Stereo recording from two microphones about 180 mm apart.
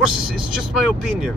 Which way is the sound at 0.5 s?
Centre (ahead or behind).